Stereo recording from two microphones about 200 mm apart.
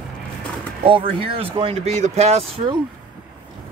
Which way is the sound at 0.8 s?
25° right (ahead or behind).